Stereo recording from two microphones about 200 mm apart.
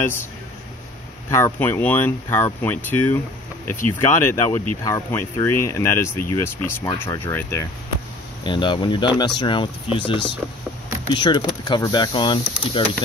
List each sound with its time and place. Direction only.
1.3 s speech: 10° left (ahead or behind)